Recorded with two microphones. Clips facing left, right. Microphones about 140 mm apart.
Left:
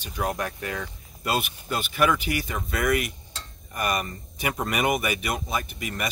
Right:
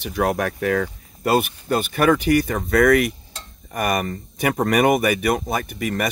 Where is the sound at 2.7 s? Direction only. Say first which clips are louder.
Right 9 dB; 65° right (ahead or behind).